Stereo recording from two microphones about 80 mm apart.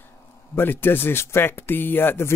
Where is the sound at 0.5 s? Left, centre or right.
Left.